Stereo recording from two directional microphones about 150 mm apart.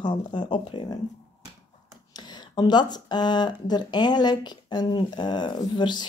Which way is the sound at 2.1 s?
30° left (ahead or behind).